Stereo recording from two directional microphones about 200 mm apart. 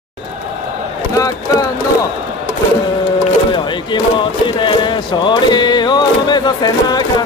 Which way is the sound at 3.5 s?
25° left (ahead or behind).